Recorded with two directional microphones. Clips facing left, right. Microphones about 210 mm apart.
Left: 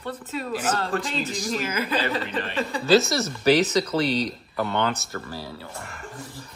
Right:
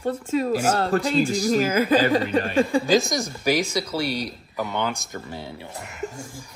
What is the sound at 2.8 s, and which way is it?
Speech, 15° right (ahead or behind).